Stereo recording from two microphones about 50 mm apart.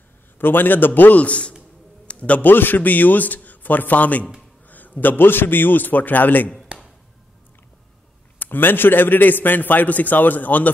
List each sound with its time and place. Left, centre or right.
0.4 s a man's voice: left
1.2 s a man's voice: left
2.0 s a sound: left
2.4 s a man's voice: left
8.4 s a man's voice: left